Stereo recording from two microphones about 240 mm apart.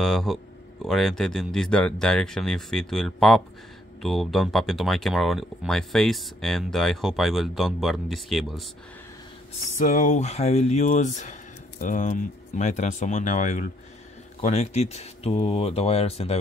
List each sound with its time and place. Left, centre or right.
0.0 s speech: centre
9.8 s speech: left